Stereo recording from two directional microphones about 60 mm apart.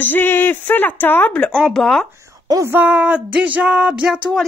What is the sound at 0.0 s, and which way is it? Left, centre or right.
Speech, left.